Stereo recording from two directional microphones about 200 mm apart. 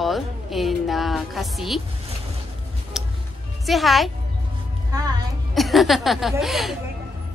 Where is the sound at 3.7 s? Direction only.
Centre (ahead or behind).